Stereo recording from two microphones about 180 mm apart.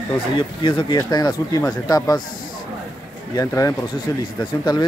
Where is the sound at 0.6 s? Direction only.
25° left (ahead or behind).